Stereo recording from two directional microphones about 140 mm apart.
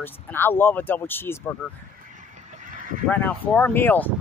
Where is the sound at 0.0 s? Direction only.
15° left (ahead or behind).